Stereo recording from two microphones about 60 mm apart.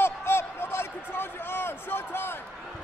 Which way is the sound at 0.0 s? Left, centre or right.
Left.